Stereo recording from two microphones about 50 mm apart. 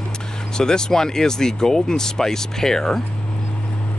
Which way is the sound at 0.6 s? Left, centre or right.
Centre.